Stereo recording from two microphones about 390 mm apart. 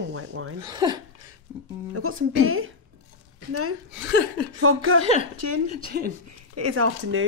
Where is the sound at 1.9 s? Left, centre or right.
Right.